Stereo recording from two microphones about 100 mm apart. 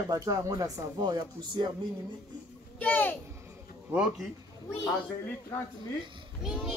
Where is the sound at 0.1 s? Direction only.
35° right (ahead or behind).